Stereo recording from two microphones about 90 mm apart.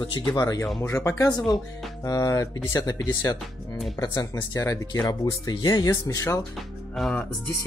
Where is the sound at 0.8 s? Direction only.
30° left (ahead or behind).